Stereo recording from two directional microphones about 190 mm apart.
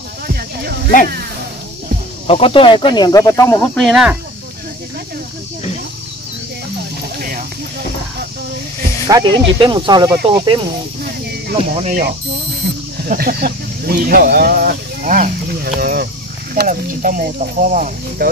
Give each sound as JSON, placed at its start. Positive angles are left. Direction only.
{"t": 2.2, "sound": "speech", "side_deg": 30}
{"t": 3.7, "sound": "speech", "side_deg": 0}
{"t": 7.2, "sound": "a sound", "side_deg": -50}
{"t": 9.0, "sound": "speech", "side_deg": -20}
{"t": 11.8, "sound": "speech", "side_deg": -45}
{"t": 12.6, "sound": "a sound", "side_deg": -35}
{"t": 13.1, "sound": "speech", "side_deg": -50}